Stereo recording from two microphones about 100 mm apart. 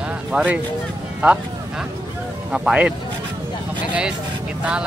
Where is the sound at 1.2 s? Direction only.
15° right (ahead or behind).